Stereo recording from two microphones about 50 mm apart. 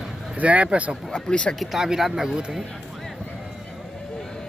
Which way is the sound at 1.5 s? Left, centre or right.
Centre.